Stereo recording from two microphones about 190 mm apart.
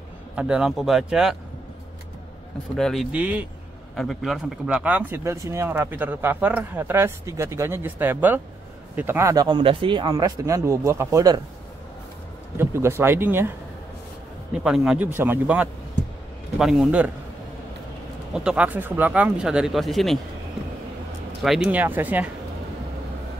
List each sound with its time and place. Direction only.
0.4 s speech: 5° right (ahead or behind)
2.8 s speech: centre (ahead or behind); by 11.4 s 20° right (ahead or behind)
12.5 s speech: 15° right (ahead or behind)
14.5 s speech: 5° right (ahead or behind)
18.3 s speech: 5° right (ahead or behind)
21.4 s speech: centre (ahead or behind)